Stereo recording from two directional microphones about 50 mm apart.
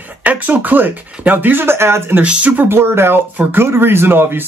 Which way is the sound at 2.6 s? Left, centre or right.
Right.